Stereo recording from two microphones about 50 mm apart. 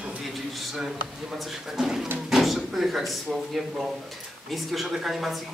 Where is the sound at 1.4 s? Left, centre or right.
Centre.